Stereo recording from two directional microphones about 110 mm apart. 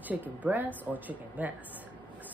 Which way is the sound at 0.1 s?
15° right (ahead or behind).